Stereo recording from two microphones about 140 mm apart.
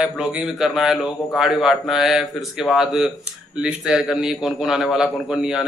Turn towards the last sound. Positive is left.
turn(degrees=-5)  # may be behind; listen again after turning